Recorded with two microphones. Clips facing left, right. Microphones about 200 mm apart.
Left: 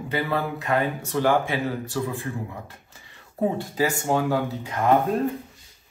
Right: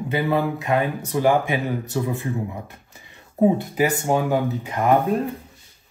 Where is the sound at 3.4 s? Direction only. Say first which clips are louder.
Right 5 dB; 15° right (ahead or behind).